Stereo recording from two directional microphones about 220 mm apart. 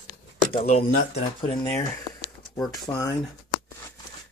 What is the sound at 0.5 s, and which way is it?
Speech, 25° left (ahead or behind).